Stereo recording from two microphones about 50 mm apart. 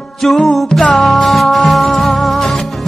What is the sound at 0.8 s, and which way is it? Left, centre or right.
Music, centre.